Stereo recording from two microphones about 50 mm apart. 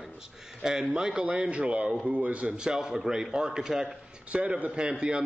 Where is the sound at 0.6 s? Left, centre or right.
Centre; by 2.6 s right.